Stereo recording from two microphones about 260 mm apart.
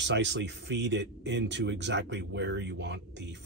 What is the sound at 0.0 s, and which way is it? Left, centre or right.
Speech, right.